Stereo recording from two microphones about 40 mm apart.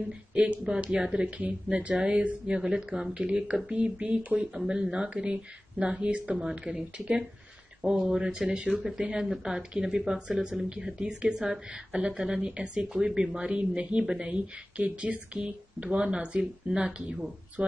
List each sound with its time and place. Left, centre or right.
0.3 s speech: right
3.3 s speech: right
6.6 s speech: centre
12.4 s speech: right
14.3 s speech: right